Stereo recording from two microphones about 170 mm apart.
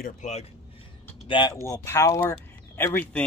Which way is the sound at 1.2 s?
25° left (ahead or behind).